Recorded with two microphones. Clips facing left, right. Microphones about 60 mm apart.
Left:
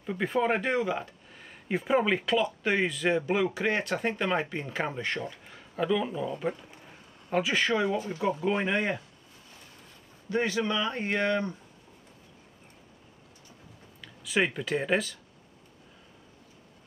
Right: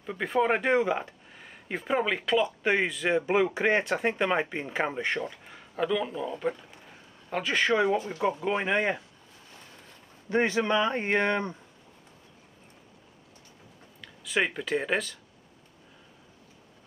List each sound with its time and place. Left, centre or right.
0.0 s speech: centre
0.7 s speech: right
1.7 s speech: centre
2.4 s speech: right
2.8 s a man's voice: centre
3.5 s speech: right
5.5 s speech: centre
7.7 s speech: right
10.3 s speech: right
14.0 s speech: centre